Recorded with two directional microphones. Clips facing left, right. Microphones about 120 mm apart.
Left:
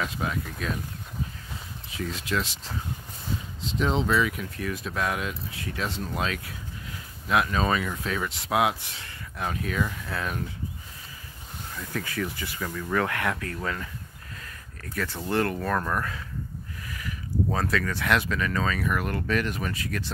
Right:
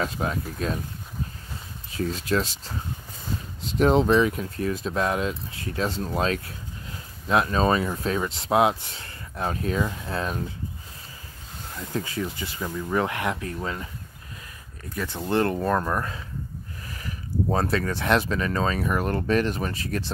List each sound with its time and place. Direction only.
0.0 s speech: 35° right (ahead or behind)
1.9 s speech: 40° right (ahead or behind)
3.6 s speech: 50° right (ahead or behind); by 10.4 s 30° right (ahead or behind)
11.7 s speech: 25° right (ahead or behind)